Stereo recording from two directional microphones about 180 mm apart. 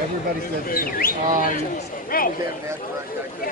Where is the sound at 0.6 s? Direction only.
50° left (ahead or behind).